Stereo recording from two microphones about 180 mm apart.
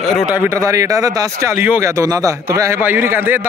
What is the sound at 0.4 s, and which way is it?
A man's voice, 15° right (ahead or behind).